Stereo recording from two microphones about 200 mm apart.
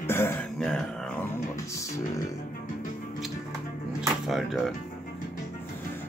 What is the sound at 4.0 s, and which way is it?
Music, centre (ahead or behind).